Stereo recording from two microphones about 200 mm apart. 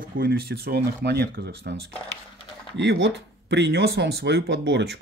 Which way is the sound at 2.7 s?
60° right (ahead or behind).